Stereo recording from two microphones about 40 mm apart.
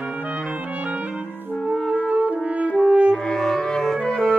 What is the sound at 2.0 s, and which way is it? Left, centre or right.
French horn, right.